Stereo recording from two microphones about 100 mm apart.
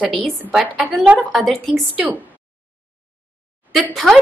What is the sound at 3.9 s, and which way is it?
Speech, centre (ahead or behind).